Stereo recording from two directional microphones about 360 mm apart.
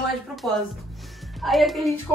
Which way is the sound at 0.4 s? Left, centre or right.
Centre.